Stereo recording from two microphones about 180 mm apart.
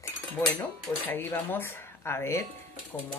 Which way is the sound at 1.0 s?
10° left (ahead or behind).